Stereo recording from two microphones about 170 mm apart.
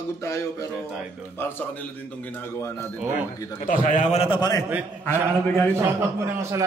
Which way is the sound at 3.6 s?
45° left (ahead or behind).